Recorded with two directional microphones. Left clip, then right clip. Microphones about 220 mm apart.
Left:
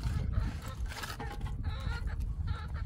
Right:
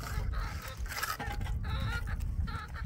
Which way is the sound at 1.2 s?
50° right (ahead or behind).